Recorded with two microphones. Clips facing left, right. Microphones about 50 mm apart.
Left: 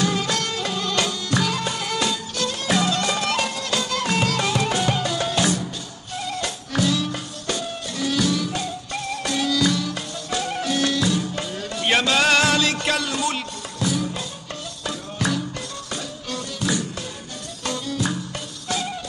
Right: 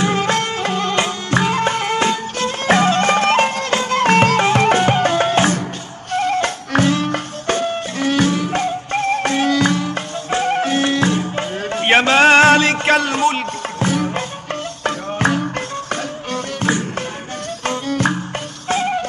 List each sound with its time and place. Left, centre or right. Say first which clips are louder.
0.0 s music: right 6 dB; right